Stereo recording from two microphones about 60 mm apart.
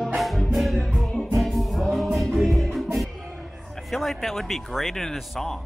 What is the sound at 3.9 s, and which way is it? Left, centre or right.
Speech, centre.